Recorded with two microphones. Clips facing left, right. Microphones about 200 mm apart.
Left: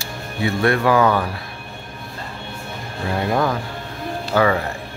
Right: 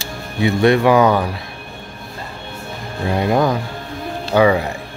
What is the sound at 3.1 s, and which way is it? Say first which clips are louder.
Speech: right 4 dB; 20° right (ahead or behind).